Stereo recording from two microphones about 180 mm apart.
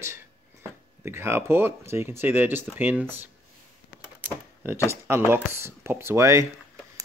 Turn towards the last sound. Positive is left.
turn(degrees=-15)  # may be behind; listen again after turning